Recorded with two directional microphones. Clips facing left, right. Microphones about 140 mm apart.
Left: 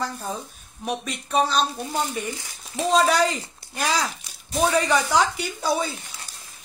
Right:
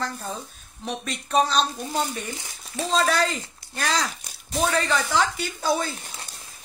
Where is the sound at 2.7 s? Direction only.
15° left (ahead or behind).